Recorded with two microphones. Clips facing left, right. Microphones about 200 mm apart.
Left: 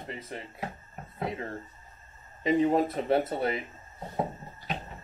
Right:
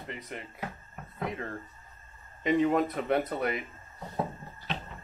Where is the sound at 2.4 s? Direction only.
30° left (ahead or behind).